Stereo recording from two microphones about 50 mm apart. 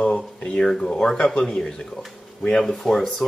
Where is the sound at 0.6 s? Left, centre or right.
Centre.